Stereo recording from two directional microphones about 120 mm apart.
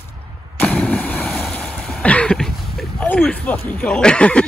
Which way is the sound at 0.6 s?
10° left (ahead or behind).